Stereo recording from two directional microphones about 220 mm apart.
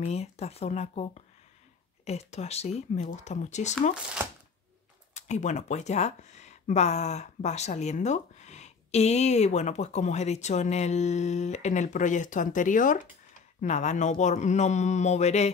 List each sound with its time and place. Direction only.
0.0 s speech: 30° left (ahead or behind)
5.1 s speech: 30° left (ahead or behind)